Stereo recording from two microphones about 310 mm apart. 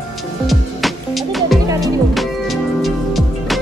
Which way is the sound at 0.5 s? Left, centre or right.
Centre.